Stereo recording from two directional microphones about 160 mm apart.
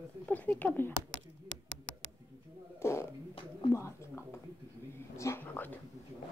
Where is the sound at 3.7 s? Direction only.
15° left (ahead or behind).